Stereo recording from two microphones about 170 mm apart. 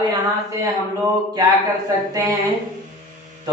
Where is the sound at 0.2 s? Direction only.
20° right (ahead or behind).